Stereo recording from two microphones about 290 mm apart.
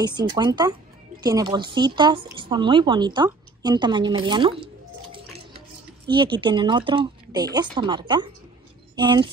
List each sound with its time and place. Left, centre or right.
0.0 s a woman's voice: centre
5.1 s music: right
6.0 s a woman's voice: centre